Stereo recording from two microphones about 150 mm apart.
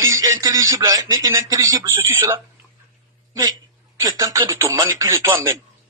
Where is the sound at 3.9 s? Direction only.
25° right (ahead or behind).